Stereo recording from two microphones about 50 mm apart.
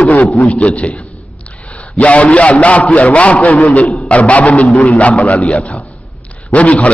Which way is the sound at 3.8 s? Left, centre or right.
Centre.